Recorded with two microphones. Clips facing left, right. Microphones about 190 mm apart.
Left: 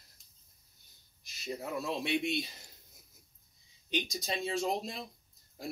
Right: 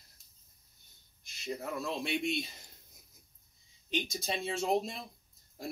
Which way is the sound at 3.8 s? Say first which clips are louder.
Even; centre (ahead or behind).